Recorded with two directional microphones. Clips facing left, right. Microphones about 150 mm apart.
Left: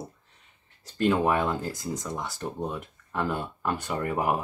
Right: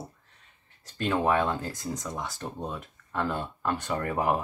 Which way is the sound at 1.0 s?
10° left (ahead or behind).